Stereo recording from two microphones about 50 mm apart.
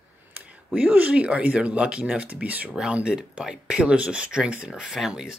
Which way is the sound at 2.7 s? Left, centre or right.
Centre.